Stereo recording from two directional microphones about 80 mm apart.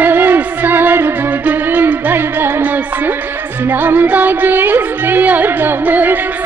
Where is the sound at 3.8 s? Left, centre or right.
Right.